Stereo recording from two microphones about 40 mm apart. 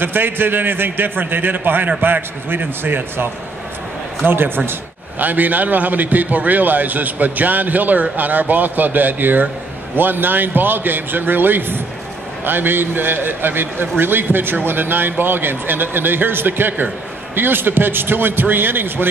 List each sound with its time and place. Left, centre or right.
0.0 s a man's voice: right
4.3 s a man's voice: right
5.2 s a man's voice: right